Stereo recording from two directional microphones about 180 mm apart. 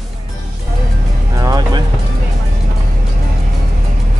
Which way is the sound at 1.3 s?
20° right (ahead or behind).